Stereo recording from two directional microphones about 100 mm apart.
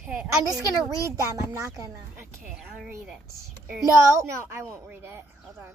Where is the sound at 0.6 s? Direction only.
30° right (ahead or behind).